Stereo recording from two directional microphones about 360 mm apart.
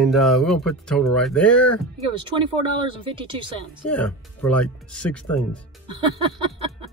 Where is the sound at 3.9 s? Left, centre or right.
Centre.